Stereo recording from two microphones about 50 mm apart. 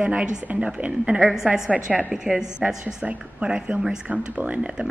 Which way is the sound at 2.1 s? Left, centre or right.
Centre.